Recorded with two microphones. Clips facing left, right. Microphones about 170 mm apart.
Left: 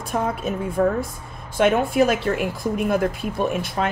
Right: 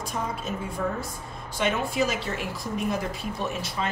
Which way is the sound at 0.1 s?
60° left (ahead or behind).